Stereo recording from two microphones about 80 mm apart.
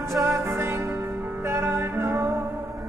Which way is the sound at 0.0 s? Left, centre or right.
Right.